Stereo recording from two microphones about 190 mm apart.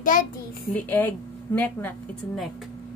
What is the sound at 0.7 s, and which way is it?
A woman's voice, 10° left (ahead or behind).